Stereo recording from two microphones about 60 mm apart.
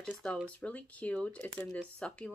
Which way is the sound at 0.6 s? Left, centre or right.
Left.